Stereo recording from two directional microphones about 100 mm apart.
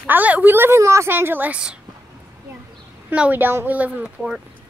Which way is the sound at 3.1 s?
15° right (ahead or behind).